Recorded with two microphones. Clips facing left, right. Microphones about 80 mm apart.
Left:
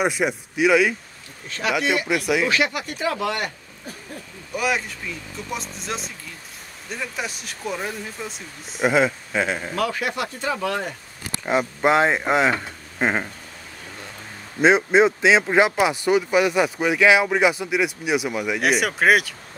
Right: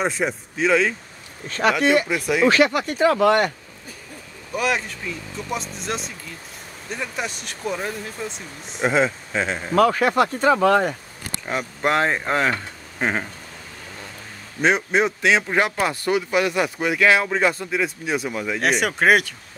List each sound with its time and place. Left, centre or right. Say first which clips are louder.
0.0 s speech: left 1 dB; centre
1.5 s speech: right 5 dB; right
4.6 s speech: right 1 dB; centre
9.8 s speech: right 10 dB; right
11.4 s speech: left 4 dB; centre
14.6 s speech: left 4 dB; left; by 19.3 s centre